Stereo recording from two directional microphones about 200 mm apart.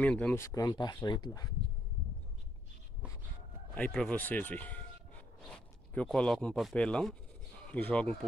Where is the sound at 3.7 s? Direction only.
5° left (ahead or behind).